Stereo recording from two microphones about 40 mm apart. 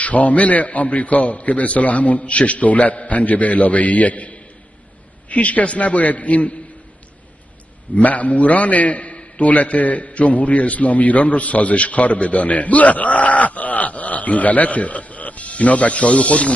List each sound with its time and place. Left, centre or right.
0.0 s a man's voice: left
7.9 s a man's voice: left